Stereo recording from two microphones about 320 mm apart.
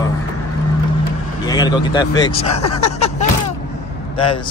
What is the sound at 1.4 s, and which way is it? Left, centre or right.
Speech, centre.